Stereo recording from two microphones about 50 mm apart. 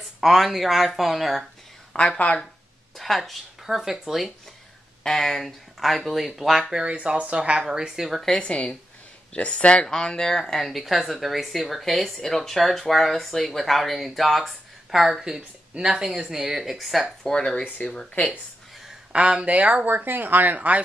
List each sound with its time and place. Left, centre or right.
0.2 s speech: centre
2.0 s speech: left
3.0 s speech: centre
5.0 s speech: centre
6.7 s speech: centre
8.4 s speech: left; by 15.4 s centre
15.7 s a woman's voice: right; by 17.0 s centre
17.2 s speech: centre
19.1 s speech: right
20.0 s speech: right